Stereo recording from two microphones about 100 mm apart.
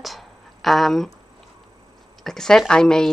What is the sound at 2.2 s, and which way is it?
Speech, 5° left (ahead or behind).